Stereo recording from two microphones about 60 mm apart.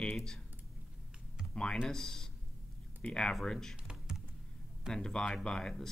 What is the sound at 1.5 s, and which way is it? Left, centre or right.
Speech, centre.